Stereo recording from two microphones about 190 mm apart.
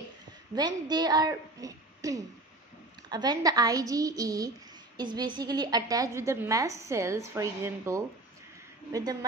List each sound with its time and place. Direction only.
0.6 s a woman's voice: 20° right (ahead or behind)